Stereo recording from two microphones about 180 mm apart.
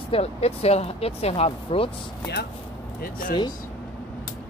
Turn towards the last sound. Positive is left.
turn(degrees=50)  # may be behind; listen again after turning